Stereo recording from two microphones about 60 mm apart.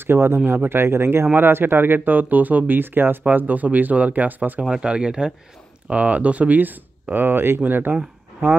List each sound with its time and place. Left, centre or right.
0.0 s speech: right
4.6 s speech: centre; by 7.9 s right
7.9 s speech: centre